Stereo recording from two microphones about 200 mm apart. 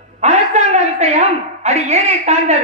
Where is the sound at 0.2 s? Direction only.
35° right (ahead or behind).